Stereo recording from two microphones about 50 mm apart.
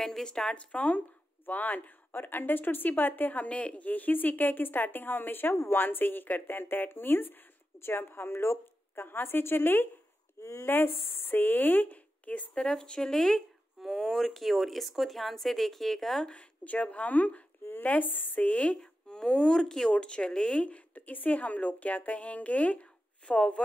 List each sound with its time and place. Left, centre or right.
0.0 s speech: centre
0.7 s a woman's voice: left
3.4 s a woman's voice: left
9.0 s a woman's voice: left
10.4 s speech: left
10.7 s a woman's voice: left
12.5 s speech: centre
13.7 s speech: centre
16.3 s speech: left
18.8 s a woman's voice: centre